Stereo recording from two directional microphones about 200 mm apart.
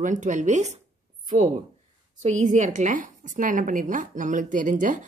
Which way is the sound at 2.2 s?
35° right (ahead or behind).